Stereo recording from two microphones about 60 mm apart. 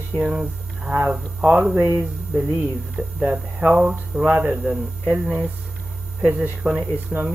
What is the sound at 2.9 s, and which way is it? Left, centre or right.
Speech, right.